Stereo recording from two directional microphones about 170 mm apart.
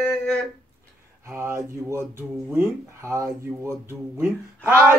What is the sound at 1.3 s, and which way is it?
Speech, 15° right (ahead or behind).